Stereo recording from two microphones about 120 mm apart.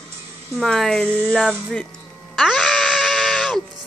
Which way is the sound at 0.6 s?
5° left (ahead or behind).